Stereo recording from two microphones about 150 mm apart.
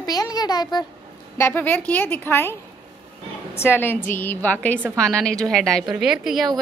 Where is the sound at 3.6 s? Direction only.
15° left (ahead or behind).